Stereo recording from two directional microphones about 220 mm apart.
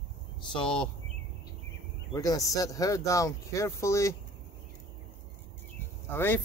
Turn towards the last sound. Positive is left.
turn(degrees=10)  # may be behind; listen again after turning